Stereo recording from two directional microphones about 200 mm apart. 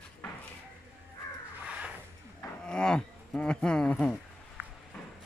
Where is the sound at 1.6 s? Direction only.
5° right (ahead or behind).